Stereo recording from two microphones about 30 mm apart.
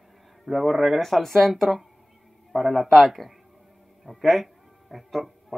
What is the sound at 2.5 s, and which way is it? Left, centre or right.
A man's voice, centre.